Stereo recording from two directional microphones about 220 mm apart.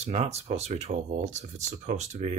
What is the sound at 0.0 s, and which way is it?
Speech, 30° right (ahead or behind).